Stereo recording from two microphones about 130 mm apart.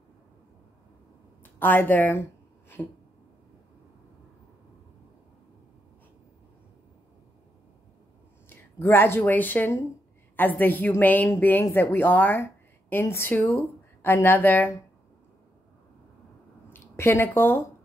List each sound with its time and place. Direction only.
1.4 s a woman's voice: 15° left (ahead or behind)
8.5 s a woman's voice: 15° left (ahead or behind)
16.7 s speech: 20° left (ahead or behind)